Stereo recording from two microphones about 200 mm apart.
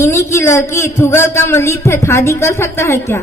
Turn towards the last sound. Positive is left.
turn(degrees=15)  # may be behind; listen again after turning